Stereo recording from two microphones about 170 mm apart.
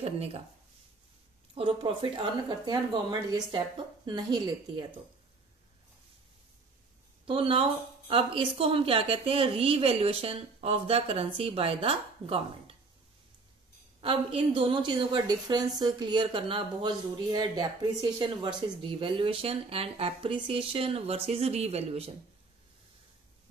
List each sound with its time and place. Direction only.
0.0 s a woman's voice: 35° right (ahead or behind)
1.5 s a woman's voice: 30° right (ahead or behind)
7.2 s a woman's voice: 30° right (ahead or behind)
14.0 s a woman's voice: 30° right (ahead or behind)